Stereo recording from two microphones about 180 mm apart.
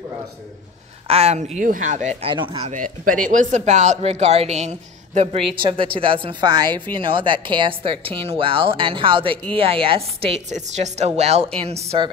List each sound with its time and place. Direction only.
1.0 s speech: 35° right (ahead or behind)
2.2 s a woman's voice: 25° right (ahead or behind)
2.7 s a woman's voice: 50° right (ahead or behind)